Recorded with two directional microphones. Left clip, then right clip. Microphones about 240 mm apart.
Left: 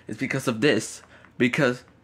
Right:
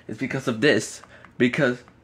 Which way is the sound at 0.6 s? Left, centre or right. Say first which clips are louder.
Right 4 dB; centre.